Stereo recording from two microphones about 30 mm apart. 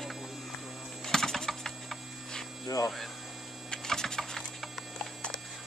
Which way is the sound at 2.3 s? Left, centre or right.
Centre.